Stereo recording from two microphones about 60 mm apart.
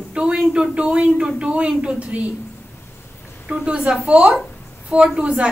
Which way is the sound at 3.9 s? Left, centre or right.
Centre.